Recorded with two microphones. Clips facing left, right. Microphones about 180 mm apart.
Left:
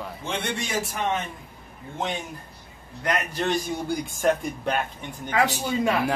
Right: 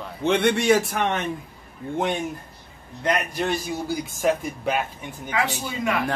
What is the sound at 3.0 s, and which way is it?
Speech, 20° right (ahead or behind).